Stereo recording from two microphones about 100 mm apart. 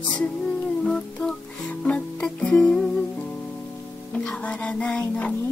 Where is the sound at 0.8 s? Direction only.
5° left (ahead or behind).